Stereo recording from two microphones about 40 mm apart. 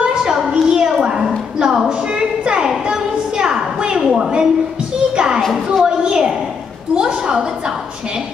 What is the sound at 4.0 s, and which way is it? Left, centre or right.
Speech, centre.